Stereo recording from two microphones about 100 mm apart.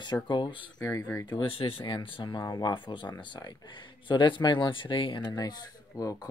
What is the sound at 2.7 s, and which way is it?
Speech, 55° left (ahead or behind).